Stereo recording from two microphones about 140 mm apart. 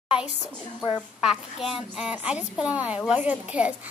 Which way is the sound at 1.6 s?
5° right (ahead or behind).